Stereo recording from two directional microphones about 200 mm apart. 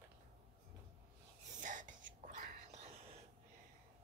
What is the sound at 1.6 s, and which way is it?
Whispering, 40° right (ahead or behind).